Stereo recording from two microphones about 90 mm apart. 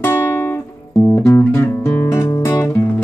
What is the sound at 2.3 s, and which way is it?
Music, 35° left (ahead or behind).